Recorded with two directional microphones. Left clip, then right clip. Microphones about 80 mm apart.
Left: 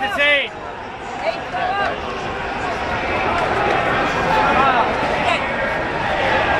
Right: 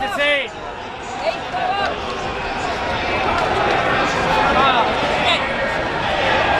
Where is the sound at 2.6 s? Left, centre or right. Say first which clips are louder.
Even; right.